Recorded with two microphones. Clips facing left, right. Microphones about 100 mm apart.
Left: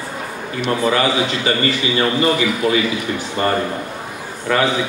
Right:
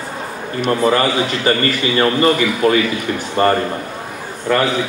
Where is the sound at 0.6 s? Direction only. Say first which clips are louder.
Right 2 dB; 45° right (ahead or behind).